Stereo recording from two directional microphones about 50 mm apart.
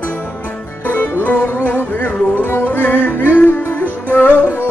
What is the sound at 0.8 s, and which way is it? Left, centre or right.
Music, left.